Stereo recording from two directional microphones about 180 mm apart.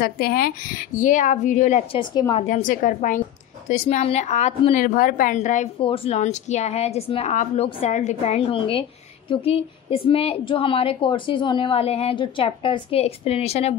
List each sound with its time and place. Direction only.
0.0 s speech: 55° left (ahead or behind); by 2.0 s 40° left (ahead or behind)
2.0 s a woman's voice: 25° left (ahead or behind)
2.3 s a woman's voice: 45° left (ahead or behind)
5.8 s a woman's voice: 30° left (ahead or behind)